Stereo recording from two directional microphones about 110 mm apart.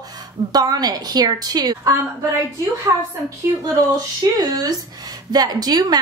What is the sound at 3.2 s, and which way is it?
A woman's voice, 30° right (ahead or behind).